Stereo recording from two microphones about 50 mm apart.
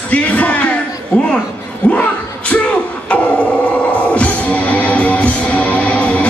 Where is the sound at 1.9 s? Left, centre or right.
Left.